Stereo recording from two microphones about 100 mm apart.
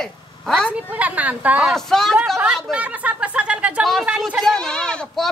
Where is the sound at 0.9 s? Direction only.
15° right (ahead or behind).